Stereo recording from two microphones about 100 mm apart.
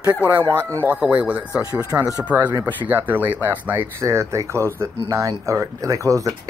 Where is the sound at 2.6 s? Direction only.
20° right (ahead or behind).